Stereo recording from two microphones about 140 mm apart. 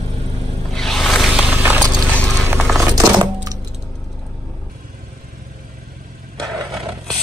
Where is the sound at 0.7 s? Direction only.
Centre (ahead or behind).